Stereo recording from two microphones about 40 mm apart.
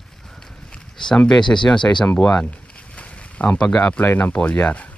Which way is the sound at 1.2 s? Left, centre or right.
Centre.